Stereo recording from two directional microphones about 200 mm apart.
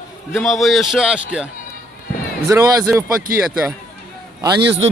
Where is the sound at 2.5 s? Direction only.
15° right (ahead or behind).